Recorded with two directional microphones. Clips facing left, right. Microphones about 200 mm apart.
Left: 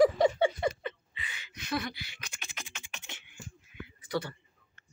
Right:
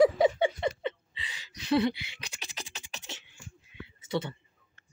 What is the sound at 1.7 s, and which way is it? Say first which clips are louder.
Beatboxing: right 9 dB; 25° right (ahead or behind).